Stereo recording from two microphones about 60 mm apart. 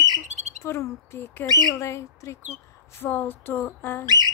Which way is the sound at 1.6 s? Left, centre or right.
Left.